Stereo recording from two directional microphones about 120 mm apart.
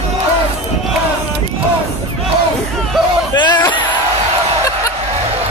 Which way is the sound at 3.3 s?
35° left (ahead or behind).